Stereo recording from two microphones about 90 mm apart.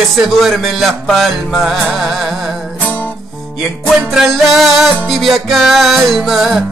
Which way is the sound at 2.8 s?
15° left (ahead or behind).